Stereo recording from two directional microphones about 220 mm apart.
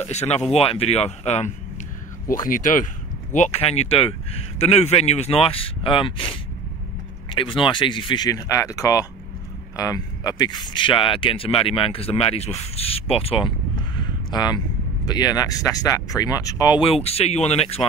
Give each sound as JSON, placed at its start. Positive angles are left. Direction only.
{"t": 0.1, "sound": "speech", "side_deg": 30}
{"t": 13.9, "sound": "a sound", "side_deg": 20}
{"t": 15.0, "sound": "speech", "side_deg": 20}